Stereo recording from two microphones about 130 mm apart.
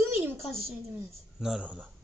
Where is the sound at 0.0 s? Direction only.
20° right (ahead or behind).